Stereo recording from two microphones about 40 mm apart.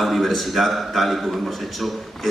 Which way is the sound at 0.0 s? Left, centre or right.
Centre.